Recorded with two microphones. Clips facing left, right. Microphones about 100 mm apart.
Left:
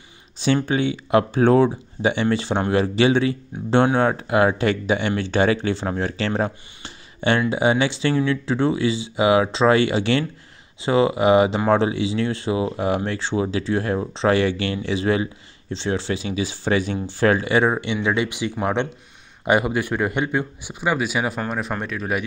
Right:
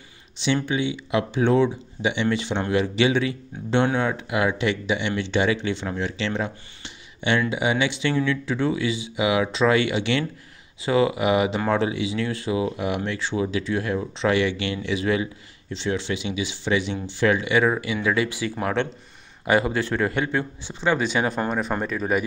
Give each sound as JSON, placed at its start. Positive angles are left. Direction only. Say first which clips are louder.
{"t": 0.7, "sound": "speech", "louder": "left 4 dB", "side_deg": 45}